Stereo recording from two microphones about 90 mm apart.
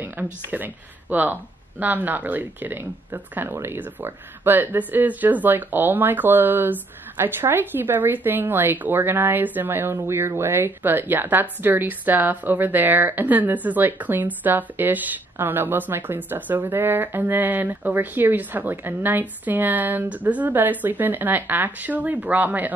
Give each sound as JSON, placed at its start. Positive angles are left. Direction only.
{"t": 0.2, "sound": "speech", "side_deg": -15}